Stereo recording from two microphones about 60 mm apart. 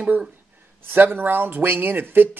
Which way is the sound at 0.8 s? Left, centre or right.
Right.